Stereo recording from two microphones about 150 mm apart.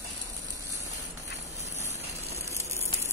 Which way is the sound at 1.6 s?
50° right (ahead or behind).